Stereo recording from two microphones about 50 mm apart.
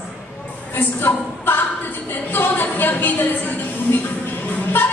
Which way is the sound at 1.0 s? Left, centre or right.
Left.